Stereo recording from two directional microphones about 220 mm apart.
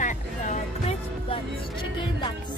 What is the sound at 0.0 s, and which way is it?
Music, 30° left (ahead or behind).